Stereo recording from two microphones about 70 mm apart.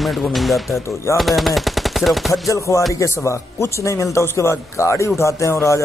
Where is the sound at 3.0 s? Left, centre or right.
Left.